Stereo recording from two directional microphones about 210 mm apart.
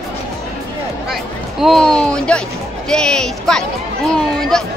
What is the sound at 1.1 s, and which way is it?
Speech, centre (ahead or behind).